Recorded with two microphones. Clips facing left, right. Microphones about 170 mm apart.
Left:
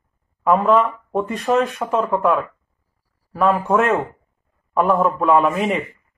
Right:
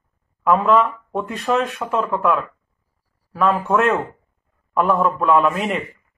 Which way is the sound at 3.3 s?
5° left (ahead or behind).